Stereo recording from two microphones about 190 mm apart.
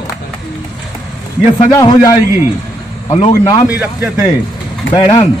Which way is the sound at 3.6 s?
10° right (ahead or behind).